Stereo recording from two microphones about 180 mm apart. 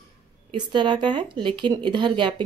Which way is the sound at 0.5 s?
25° right (ahead or behind).